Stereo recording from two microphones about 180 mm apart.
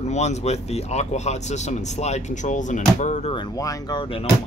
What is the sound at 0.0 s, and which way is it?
Speech, 40° left (ahead or behind).